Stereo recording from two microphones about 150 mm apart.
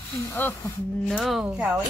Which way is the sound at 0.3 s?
15° left (ahead or behind).